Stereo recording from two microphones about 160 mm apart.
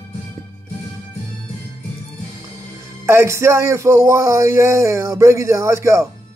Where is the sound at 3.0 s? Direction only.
15° right (ahead or behind).